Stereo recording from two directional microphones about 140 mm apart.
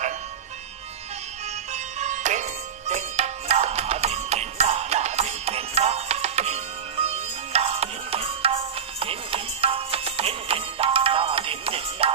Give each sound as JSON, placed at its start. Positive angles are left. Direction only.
{"t": 1.7, "sound": "music", "side_deg": -55}